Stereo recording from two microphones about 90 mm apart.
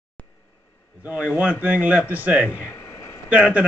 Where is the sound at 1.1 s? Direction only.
15° right (ahead or behind).